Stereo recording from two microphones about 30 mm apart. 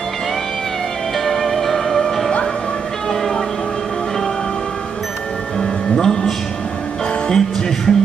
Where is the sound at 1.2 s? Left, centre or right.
Centre.